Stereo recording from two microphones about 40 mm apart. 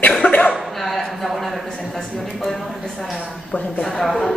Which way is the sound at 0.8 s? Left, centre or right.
Centre.